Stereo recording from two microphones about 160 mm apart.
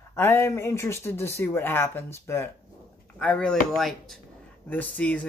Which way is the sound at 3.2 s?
5° left (ahead or behind).